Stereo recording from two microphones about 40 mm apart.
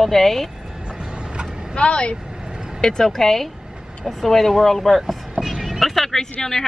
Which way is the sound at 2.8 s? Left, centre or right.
Centre.